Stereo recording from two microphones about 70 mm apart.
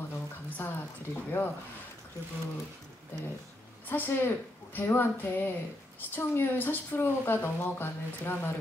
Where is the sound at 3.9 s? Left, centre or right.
Left.